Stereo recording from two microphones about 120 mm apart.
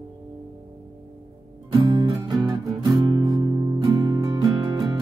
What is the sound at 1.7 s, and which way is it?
Music, 40° right (ahead or behind).